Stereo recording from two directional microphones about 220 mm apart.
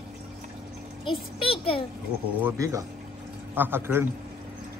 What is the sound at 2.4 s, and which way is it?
A man's voice, 15° right (ahead or behind).